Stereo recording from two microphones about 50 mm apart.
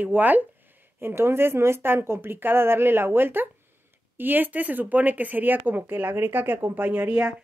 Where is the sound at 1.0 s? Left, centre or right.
Right.